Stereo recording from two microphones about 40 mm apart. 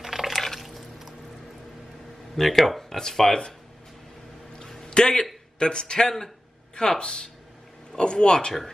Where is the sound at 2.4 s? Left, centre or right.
Centre.